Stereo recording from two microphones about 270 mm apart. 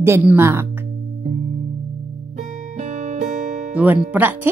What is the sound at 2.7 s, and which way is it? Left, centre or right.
Music, right.